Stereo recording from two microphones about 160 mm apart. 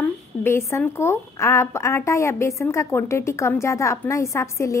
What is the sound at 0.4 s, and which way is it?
A woman's voice, 15° left (ahead or behind).